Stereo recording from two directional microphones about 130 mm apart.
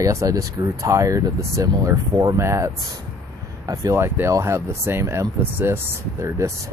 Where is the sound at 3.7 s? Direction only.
25° right (ahead or behind).